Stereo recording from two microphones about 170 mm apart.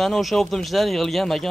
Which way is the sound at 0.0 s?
Centre (ahead or behind).